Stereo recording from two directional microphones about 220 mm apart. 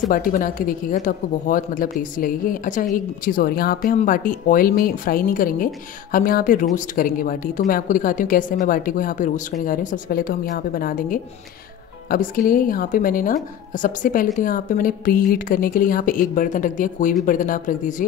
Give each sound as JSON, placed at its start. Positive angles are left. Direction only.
{"t": 0.1, "sound": "speech", "side_deg": 40}